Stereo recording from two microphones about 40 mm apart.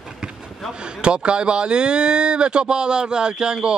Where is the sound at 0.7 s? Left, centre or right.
Right.